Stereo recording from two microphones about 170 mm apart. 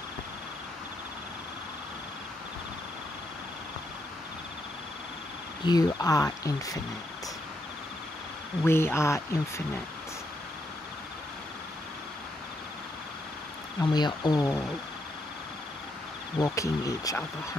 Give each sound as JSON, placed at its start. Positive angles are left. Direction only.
{"t": 5.7, "sound": "speech", "side_deg": 25}
{"t": 8.6, "sound": "speech", "side_deg": 15}
{"t": 13.7, "sound": "speech", "side_deg": 25}
{"t": 16.3, "sound": "speech", "side_deg": 20}